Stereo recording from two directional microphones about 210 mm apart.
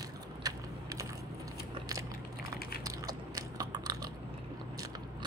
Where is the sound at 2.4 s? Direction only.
45° left (ahead or behind).